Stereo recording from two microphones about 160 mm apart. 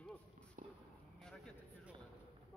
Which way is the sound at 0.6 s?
55° right (ahead or behind).